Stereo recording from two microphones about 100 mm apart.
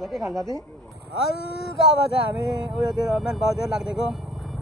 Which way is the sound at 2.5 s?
Centre (ahead or behind).